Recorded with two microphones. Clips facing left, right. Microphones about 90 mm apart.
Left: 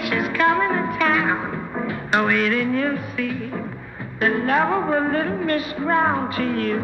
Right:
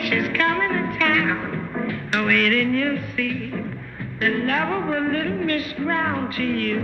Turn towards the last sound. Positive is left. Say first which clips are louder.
# left 1 dB
turn(degrees=20)  # may be behind; listen again after turning